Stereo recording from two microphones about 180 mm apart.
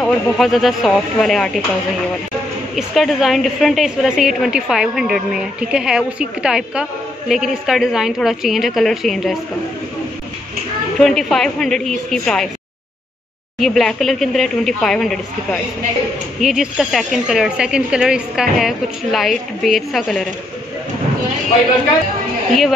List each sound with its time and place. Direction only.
0.0 s a woman's voice: centre (ahead or behind)
2.7 s a woman's voice: centre (ahead or behind)
11.0 s a woman's voice: centre (ahead or behind)
13.6 s a woman's voice: centre (ahead or behind)
22.5 s a woman's voice: centre (ahead or behind)